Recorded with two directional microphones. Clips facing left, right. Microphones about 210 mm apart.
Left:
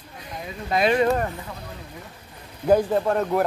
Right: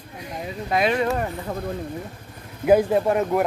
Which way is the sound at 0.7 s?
Centre (ahead or behind).